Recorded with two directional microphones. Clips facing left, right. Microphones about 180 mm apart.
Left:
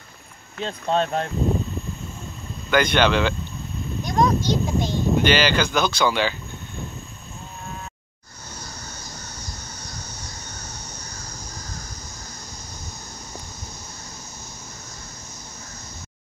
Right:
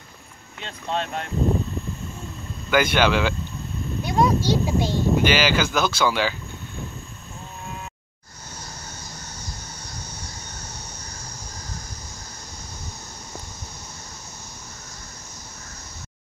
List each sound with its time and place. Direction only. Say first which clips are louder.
0.6 s speech: left 6 dB; 40° left (ahead or behind)
2.7 s speech: left 1 dB; 5° right (ahead or behind)